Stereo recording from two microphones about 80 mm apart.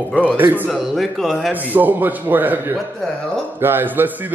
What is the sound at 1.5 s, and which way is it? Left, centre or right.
A man's voice, right.